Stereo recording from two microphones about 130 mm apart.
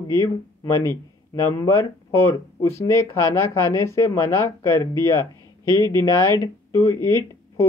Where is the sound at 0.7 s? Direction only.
25° left (ahead or behind).